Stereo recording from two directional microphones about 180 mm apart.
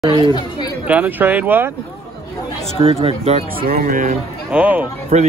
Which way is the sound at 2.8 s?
30° right (ahead or behind).